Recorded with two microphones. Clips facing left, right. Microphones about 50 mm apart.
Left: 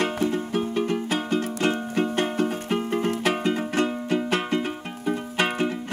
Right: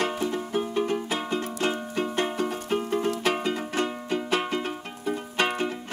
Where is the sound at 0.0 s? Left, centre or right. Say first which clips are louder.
Left 3 dB; left.